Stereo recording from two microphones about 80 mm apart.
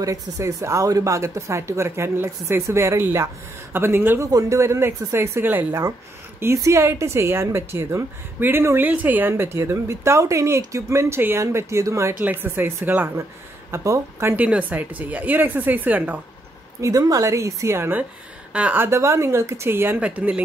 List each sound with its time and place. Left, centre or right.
0.0 s a woman's voice: right
4.2 s a woman's voice: right
6.4 s a woman's voice: right
12.2 s speech: right
13.7 s a woman's voice: right
14.3 s speech: centre
16.8 s a woman's voice: right
18.5 s a woman's voice: centre
18.8 s a woman's voice: right
20.0 s speech: centre